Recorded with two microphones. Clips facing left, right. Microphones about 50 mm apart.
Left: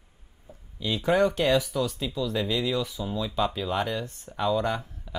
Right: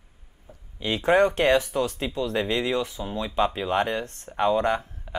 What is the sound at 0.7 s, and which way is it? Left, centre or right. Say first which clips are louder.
Speech: right 3 dB; right.